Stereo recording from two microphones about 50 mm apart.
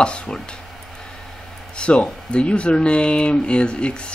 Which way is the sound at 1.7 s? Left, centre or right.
Left.